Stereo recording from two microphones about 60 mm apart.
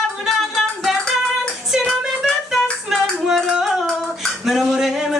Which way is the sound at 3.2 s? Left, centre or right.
Centre.